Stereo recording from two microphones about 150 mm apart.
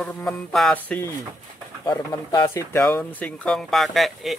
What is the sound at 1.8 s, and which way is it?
Speech, 25° left (ahead or behind).